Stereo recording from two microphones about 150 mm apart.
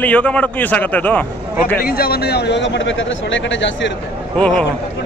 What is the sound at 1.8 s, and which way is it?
Speech, 90° left.